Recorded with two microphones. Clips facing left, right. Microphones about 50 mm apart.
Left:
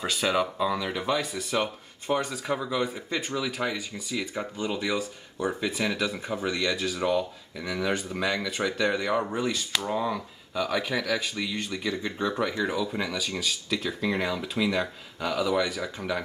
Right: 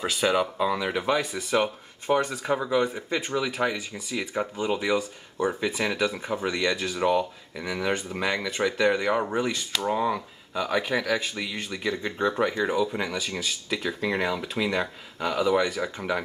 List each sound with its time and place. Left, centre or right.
0.0 s speech: centre